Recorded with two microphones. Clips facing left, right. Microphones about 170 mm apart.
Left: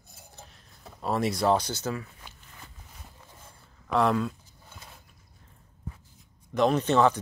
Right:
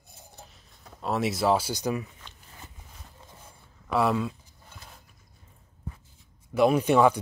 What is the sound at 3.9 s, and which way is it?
Speech, 5° right (ahead or behind).